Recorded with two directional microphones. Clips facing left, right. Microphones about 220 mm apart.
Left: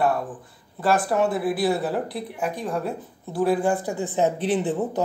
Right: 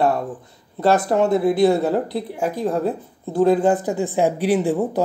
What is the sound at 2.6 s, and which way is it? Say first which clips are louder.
Speech: right 6 dB; 40° right (ahead or behind).